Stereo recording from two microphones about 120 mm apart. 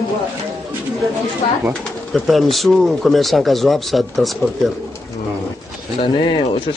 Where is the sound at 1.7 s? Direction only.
Centre (ahead or behind).